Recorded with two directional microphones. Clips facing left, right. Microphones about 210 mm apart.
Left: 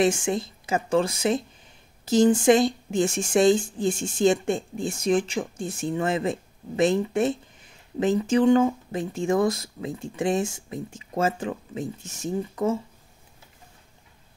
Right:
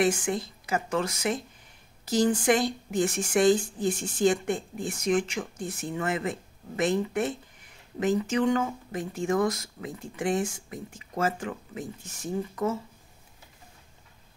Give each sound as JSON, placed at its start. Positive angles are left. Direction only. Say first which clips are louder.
{"t": 0.0, "sound": "speech", "louder": "left 3 dB", "side_deg": 25}